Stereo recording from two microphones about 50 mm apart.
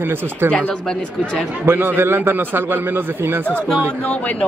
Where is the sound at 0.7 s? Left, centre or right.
Centre.